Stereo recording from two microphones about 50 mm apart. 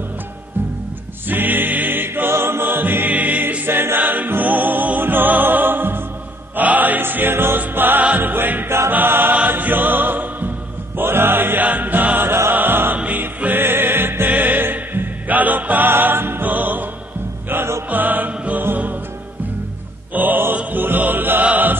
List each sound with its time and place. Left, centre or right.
1.2 s music: right
3.6 s choir: right
4.3 s music: right
8.6 s choir: right
8.9 s choir: right
9.5 s music: right
12.3 s music: right
12.9 s music: right
13.4 s music: right
20.2 s music: right
21.5 s mantra: right